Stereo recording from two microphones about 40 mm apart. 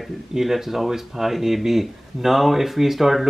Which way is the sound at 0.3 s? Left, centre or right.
Centre.